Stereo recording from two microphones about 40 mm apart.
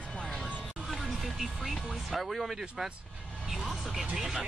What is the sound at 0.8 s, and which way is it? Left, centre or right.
Speech, centre.